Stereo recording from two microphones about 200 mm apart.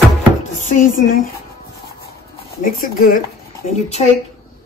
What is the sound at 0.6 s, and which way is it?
Music, 40° left (ahead or behind).